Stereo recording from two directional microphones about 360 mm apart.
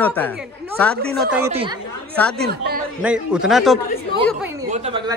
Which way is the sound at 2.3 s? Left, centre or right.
Right.